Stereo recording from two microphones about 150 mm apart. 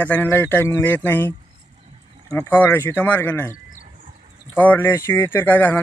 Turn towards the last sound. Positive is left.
turn(degrees=15)  # may be behind; listen again after turning